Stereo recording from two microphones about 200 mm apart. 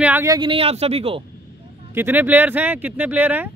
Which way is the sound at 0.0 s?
10° right (ahead or behind).